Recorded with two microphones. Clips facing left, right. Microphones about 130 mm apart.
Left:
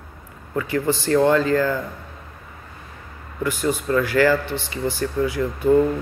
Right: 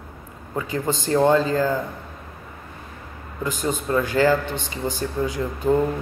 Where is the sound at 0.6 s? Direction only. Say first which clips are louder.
Left 3 dB; 20° right (ahead or behind).